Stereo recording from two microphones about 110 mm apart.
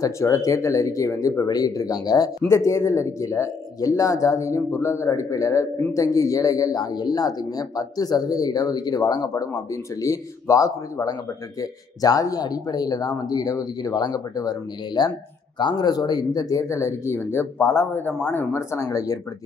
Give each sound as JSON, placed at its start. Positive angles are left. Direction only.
{"t": 0.0, "sound": "speech", "side_deg": 30}